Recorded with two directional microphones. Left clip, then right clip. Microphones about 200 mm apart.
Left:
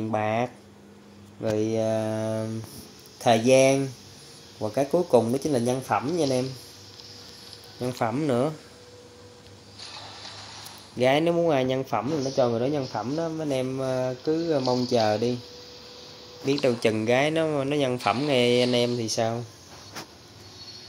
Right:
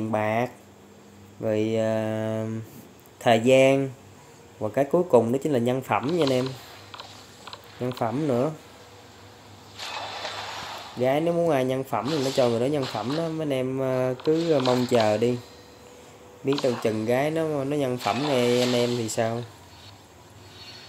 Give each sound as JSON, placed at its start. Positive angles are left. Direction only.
{"t": 0.1, "sound": "speech", "side_deg": -5}
{"t": 7.8, "sound": "speech", "side_deg": -5}
{"t": 9.8, "sound": "a sound", "side_deg": 0}
{"t": 12.3, "sound": "speech", "side_deg": -10}
{"t": 15.0, "sound": "speech", "side_deg": -10}
{"t": 16.4, "sound": "speech", "side_deg": 0}